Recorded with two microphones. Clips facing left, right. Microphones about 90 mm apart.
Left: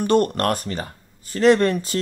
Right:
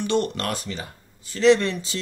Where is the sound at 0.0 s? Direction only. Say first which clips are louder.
Left 5 dB; 50° left (ahead or behind).